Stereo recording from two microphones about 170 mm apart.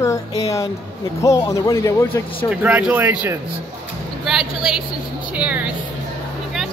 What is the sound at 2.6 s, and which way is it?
Speech, 10° right (ahead or behind).